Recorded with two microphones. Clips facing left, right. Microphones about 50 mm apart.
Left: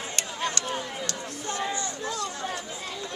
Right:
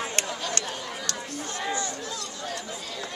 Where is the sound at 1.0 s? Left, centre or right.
Centre.